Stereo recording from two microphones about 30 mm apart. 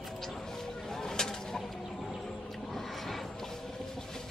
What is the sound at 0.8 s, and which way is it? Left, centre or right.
Vehicle, centre.